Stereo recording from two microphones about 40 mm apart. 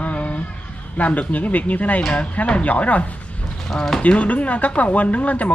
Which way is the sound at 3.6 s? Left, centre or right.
Centre.